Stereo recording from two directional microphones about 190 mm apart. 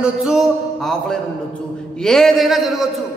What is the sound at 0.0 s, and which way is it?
A man's voice, 5° right (ahead or behind).